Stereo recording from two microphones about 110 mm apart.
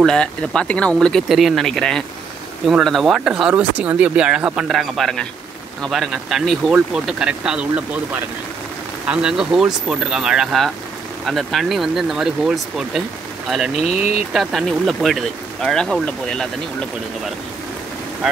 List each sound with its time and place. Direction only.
0.0 s speech: 5° left (ahead or behind); by 7.8 s 10° right (ahead or behind)
9.1 s speech: 5° right (ahead or behind)
13.7 s speech: 75° left (ahead or behind)
14.1 s speech: centre (ahead or behind)